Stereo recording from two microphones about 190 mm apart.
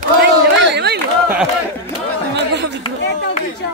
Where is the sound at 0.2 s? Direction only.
65° right (ahead or behind).